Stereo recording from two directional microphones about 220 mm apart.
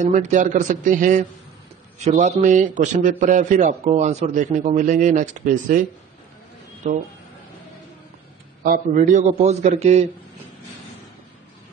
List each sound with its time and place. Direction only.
0.0 s a man's voice: 35° right (ahead or behind)
8.6 s a man's voice: 40° right (ahead or behind)